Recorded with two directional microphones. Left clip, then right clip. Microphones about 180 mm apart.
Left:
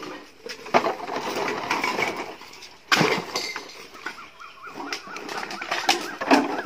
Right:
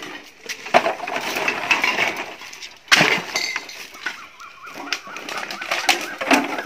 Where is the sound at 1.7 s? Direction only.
10° right (ahead or behind).